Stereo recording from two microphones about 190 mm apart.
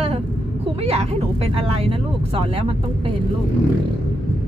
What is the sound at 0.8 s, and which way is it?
Speech, 30° right (ahead or behind).